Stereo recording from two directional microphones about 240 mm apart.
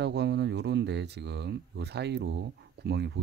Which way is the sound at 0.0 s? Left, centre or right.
Right.